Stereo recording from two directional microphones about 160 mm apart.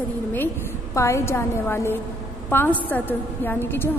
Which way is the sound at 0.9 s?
20° left (ahead or behind).